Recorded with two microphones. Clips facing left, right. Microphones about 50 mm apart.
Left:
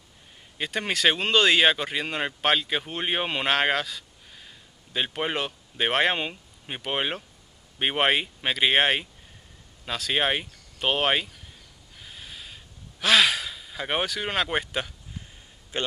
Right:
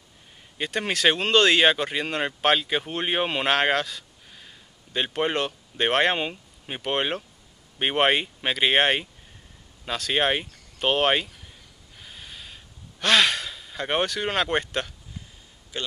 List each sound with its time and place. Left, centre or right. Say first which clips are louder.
0.6 s speech: right 1 dB; centre
12.0 s gasp: even; centre
15.7 s a man's voice: left 3 dB; left